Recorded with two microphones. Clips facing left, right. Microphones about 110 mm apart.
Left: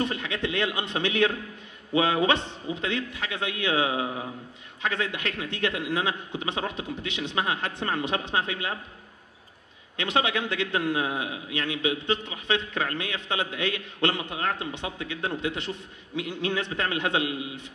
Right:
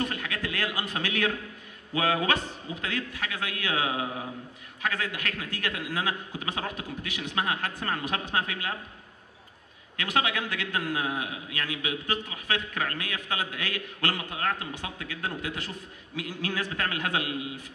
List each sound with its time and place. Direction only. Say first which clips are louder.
0.0 s a man's voice: left 3 dB; 25° left (ahead or behind)
9.9 s a man's voice: left 2 dB; 25° left (ahead or behind)